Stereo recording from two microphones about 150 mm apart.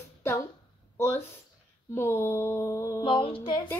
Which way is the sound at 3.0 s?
35° left (ahead or behind).